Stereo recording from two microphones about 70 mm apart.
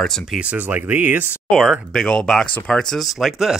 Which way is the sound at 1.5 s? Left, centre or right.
Centre.